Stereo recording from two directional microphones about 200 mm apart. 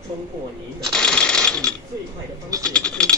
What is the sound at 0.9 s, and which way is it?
Shuffling cards, 5° left (ahead or behind).